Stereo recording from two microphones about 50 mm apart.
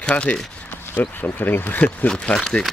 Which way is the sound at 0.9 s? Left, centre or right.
Left.